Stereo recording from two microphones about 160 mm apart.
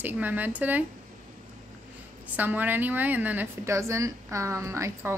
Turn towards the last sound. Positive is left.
turn(degrees=-15)  # may be behind; listen again after turning